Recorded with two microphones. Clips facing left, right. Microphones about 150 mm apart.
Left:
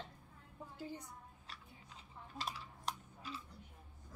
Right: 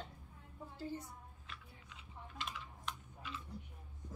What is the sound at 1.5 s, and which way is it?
Chewing, 35° left (ahead or behind).